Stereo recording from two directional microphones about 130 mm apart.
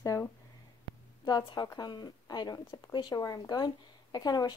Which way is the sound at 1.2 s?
35° left (ahead or behind).